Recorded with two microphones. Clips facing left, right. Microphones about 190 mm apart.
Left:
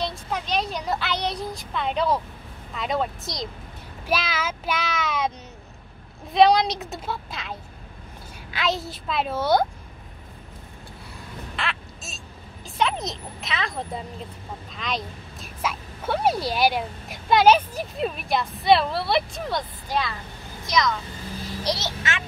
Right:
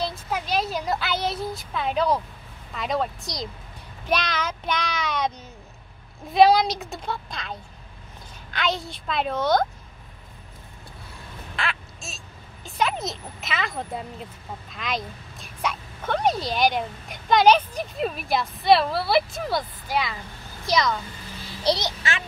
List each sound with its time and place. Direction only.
0.0 s speech: 5° right (ahead or behind)
6.3 s speech: 5° right (ahead or behind)
11.5 s quack: centre (ahead or behind)
12.6 s speech: centre (ahead or behind)
20.6 s speech: 30° right (ahead or behind)